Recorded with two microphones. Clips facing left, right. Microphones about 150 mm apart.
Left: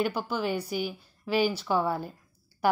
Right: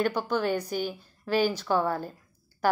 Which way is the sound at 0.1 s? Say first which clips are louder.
Right 3 dB; 10° left (ahead or behind).